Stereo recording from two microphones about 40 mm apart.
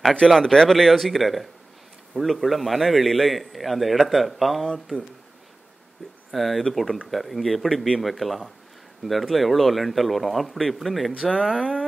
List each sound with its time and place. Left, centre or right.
0.4 s a man's voice: centre
6.3 s a man's voice: centre
11.3 s speech: centre